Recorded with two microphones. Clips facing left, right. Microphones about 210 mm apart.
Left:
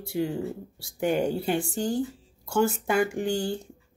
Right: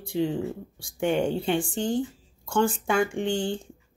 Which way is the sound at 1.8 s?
20° right (ahead or behind).